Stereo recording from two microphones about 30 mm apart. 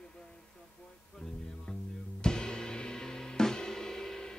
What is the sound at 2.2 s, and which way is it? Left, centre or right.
Music, left.